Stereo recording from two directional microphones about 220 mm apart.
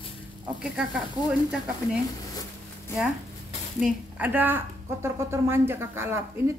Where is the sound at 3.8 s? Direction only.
10° right (ahead or behind).